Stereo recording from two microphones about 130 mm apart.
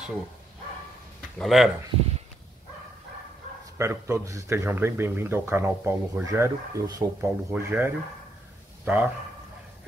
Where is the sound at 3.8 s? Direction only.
20° right (ahead or behind).